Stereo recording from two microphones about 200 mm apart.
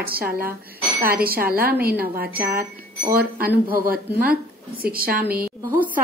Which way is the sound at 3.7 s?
45° right (ahead or behind).